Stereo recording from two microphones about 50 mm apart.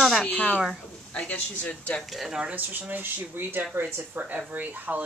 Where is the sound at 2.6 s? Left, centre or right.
Right.